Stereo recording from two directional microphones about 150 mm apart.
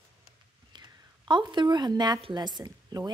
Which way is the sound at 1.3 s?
30° right (ahead or behind).